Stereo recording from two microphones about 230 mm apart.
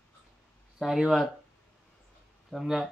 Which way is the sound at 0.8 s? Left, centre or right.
Centre.